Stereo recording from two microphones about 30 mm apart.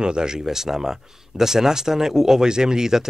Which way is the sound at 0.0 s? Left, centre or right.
Right.